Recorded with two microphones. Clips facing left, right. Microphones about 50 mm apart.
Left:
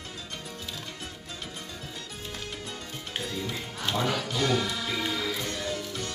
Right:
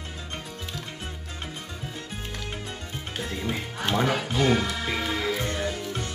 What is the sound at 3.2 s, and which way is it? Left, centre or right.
Music, right.